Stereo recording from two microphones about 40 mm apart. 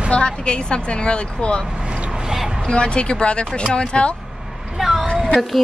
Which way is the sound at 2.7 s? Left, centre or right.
Left.